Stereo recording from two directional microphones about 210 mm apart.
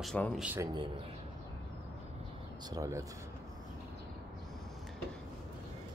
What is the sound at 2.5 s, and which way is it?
Speech, 20° right (ahead or behind).